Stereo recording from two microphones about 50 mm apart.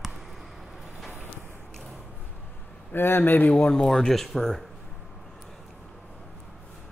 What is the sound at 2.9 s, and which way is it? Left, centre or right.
Speech, left.